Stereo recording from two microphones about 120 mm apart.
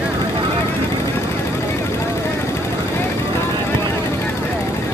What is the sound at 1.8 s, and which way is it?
Vehicle, 25° left (ahead or behind).